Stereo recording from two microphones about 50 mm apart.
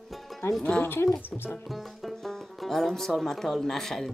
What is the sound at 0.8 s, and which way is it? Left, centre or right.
Speech, left.